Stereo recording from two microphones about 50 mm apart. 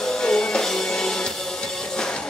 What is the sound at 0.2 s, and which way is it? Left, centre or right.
Music, centre.